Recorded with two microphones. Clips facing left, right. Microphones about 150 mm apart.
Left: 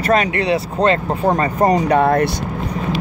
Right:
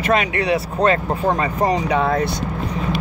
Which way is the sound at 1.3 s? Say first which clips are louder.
Left 5 dB; 45° left (ahead or behind).